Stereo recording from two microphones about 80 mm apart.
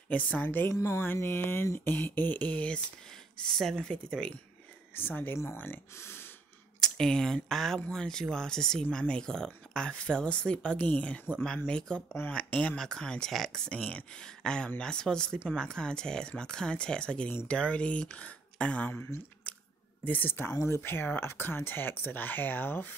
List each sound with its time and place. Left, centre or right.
0.1 s speech: centre
0.7 s speech: left; by 4.3 s centre
4.9 s speech: left
6.8 s speech: centre
20.1 s speech: left